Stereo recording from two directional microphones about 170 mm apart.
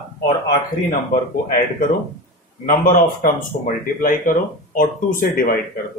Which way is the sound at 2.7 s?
50° left (ahead or behind).